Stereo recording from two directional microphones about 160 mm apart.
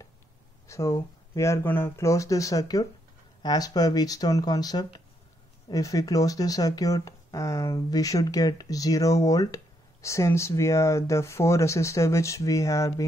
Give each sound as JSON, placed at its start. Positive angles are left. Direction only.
{"t": 0.7, "sound": "speech", "side_deg": 20}